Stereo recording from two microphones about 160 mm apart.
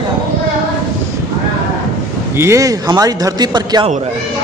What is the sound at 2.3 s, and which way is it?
A man's voice, 20° right (ahead or behind).